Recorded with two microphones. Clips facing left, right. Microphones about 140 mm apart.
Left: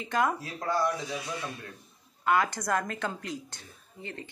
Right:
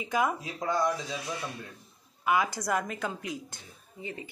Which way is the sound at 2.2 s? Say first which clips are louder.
Left 1 dB; 10° right (ahead or behind).